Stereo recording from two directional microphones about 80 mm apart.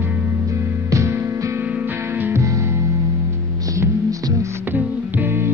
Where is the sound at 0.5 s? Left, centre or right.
Right.